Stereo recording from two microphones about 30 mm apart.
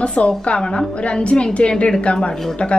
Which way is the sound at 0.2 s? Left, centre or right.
Left.